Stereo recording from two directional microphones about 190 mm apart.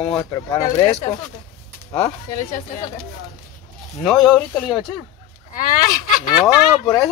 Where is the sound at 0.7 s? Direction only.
30° left (ahead or behind).